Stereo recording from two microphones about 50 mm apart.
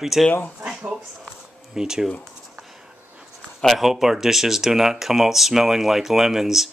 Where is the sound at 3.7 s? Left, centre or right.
Centre.